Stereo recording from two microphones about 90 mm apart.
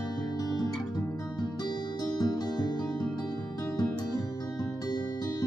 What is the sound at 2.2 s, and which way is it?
Music, 50° left (ahead or behind).